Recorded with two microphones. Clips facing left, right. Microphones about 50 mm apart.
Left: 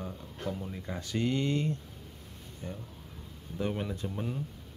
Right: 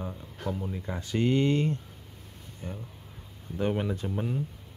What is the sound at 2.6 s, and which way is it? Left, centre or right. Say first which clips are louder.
Speech: right 2 dB; centre.